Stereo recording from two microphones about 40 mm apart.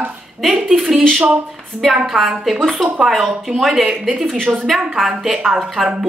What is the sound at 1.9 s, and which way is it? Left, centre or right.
Speech, centre.